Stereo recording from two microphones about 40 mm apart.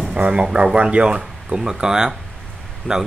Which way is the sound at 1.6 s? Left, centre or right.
Centre.